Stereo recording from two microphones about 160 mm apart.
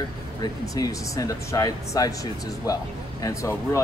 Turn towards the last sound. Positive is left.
turn(degrees=20)  # may be behind; listen again after turning